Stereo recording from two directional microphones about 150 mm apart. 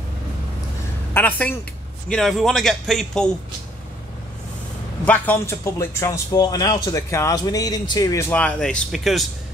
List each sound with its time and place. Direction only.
1.1 s a woman's voice: 10° left (ahead or behind)
5.0 s a man's voice: 10° left (ahead or behind)